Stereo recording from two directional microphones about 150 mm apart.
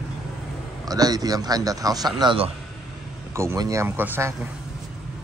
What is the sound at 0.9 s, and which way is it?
Speech, 25° right (ahead or behind).